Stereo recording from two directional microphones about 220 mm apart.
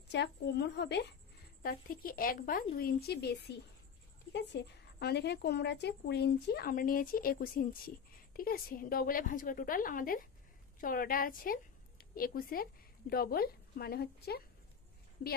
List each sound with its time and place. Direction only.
0.1 s a woman's voice: 50° left (ahead or behind)